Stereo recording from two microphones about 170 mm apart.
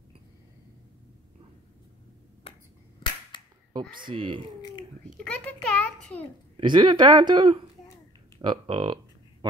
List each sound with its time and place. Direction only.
3.0 s finger snapping: 30° left (ahead or behind)
3.8 s speech: 55° right (ahead or behind)
4.1 s speech: 30° right (ahead or behind)
5.0 s a child's voice: 5° left (ahead or behind)
6.5 s speech: 25° right (ahead or behind)
8.4 s a sound: 30° right (ahead or behind)